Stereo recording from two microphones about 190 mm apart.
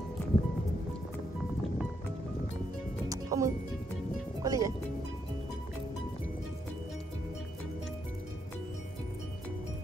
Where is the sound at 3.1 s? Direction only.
15° right (ahead or behind).